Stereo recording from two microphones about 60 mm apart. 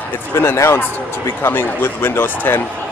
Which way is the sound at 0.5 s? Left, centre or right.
Left.